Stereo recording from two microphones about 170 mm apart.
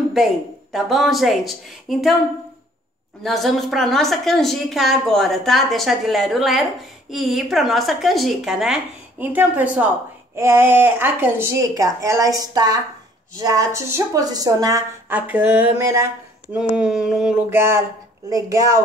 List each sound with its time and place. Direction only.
0.1 s a woman's voice: centre (ahead or behind)
3.2 s a woman's voice: centre (ahead or behind); by 14.8 s 20° right (ahead or behind)
15.0 s a woman's voice: 10° right (ahead or behind)